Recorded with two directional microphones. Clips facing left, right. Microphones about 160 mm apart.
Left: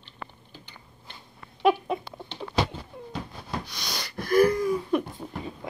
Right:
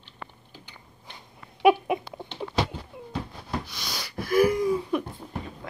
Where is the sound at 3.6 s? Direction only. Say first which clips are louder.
Left 1 dB; 5° right (ahead or behind).